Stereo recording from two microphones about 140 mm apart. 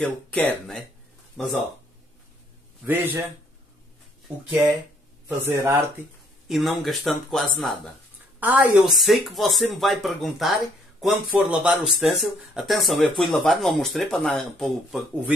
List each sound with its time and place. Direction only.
0.0 s speech: 10° left (ahead or behind)
2.8 s a woman's voice: 15° right (ahead or behind)
5.4 s a woman's voice: 15° right (ahead or behind)
6.4 s speech: centre (ahead or behind)
8.4 s a woman's voice: 10° right (ahead or behind)
8.9 s speech: centre (ahead or behind)